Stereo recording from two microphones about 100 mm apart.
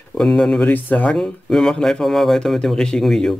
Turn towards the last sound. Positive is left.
turn(degrees=5)  # may be behind; listen again after turning